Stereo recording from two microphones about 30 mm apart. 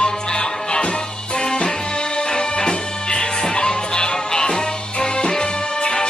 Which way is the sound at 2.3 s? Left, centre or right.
Left.